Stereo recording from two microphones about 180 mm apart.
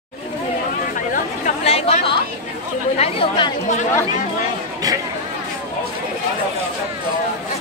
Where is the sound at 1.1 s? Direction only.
40° left (ahead or behind).